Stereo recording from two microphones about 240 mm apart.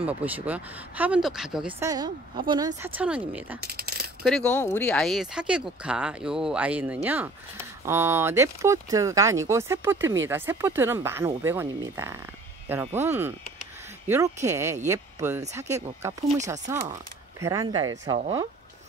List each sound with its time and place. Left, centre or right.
0.0 s speech: centre
2.4 s speech: centre
3.6 s a sound: right
4.2 s speech: centre